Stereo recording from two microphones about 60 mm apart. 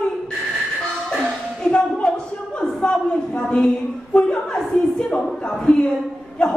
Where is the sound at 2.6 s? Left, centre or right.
Centre.